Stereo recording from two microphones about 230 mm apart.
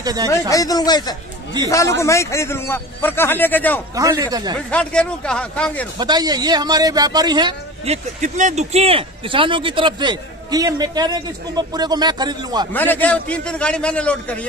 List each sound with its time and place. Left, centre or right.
0.0 s speech: centre
0.3 s a man's voice: centre
3.9 s a man's voice: centre
4.6 s a man's voice: centre
5.9 s a man's voice: centre
12.7 s a man's voice: centre